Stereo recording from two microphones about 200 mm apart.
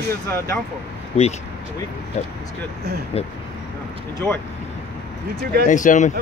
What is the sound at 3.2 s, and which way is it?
Speech, 30° left (ahead or behind).